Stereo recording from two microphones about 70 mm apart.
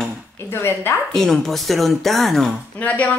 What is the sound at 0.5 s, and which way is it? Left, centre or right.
Speech, left.